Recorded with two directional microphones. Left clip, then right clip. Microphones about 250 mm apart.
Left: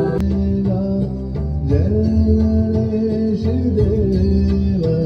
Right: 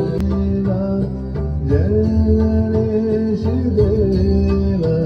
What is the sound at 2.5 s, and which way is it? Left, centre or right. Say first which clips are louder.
Music: right 2 dB; centre.